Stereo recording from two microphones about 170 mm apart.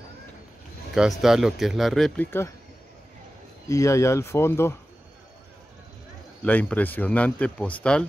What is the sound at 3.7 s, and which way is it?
Speech, 20° left (ahead or behind).